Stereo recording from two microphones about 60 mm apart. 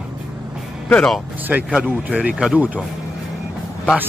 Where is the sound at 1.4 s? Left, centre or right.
Right.